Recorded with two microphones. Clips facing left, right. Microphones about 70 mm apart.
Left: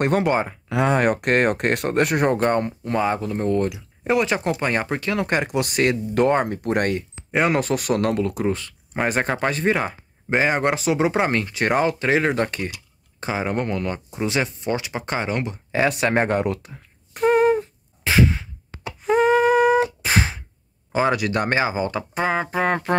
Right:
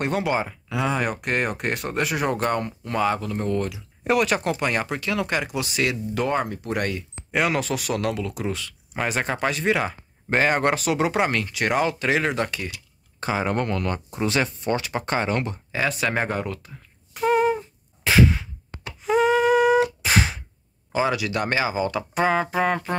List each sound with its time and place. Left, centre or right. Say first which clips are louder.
0.0 s speech: left 4 dB; left
0.7 s speech: left 7 dB; left
3.7 s speech: left 1 dB; left
7.3 s speech: left 3 dB; left
10.3 s speech: left 1 dB; centre; by 12.7 s left
13.3 s speech: even; centre
17.1 s a sound: left 3 dB; left
18.0 s a sound: even; centre
19.0 s humming: left 2 dB; left
20.0 s a sound: even; left
20.9 s speech: left 3 dB; left
22.2 s speech: right 1 dB; centre